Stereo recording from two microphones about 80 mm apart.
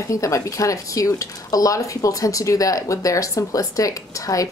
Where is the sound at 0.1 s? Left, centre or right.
Left.